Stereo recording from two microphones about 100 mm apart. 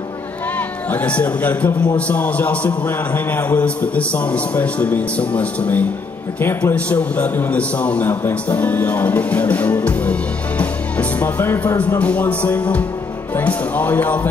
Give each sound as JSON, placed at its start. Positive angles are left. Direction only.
{"t": 0.8, "sound": "a man's voice", "side_deg": 15}
{"t": 10.6, "sound": "music", "side_deg": 15}
{"t": 12.0, "sound": "a man's voice", "side_deg": 15}